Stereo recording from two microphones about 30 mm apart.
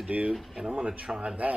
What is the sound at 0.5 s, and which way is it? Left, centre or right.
Speech, right.